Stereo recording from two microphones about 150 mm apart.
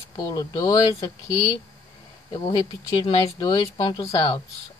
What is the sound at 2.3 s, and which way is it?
Speech, 30° left (ahead or behind).